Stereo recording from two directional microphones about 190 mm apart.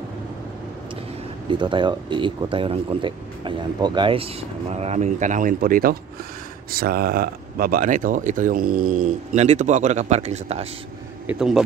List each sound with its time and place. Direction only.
1.5 s speech: 25° right (ahead or behind)
11.2 s speech: 5° right (ahead or behind)